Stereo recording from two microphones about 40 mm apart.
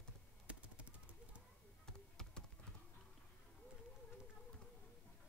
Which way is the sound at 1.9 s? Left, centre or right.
Centre.